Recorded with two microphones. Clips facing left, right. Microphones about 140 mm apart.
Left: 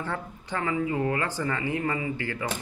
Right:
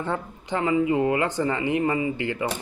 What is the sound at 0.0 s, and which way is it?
Speech, 20° right (ahead or behind).